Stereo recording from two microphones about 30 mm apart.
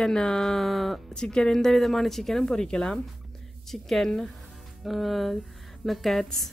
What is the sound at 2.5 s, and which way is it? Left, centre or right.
Speech, left.